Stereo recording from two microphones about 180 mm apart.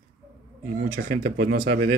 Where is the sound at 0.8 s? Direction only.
55° right (ahead or behind).